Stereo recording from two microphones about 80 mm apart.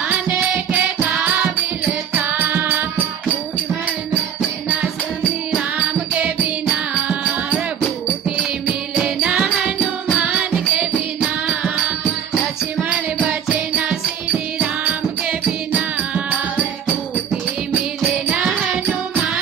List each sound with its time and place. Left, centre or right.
0.7 s music: right
9.0 s music: centre
14.6 s music: centre